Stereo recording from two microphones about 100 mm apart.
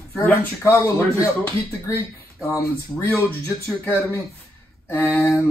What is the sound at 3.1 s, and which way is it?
Speech, 20° left (ahead or behind).